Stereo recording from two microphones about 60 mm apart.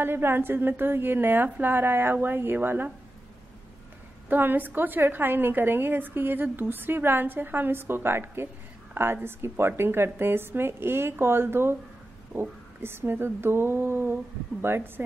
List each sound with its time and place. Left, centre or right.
0.0 s a woman's voice: right
4.3 s a woman's voice: right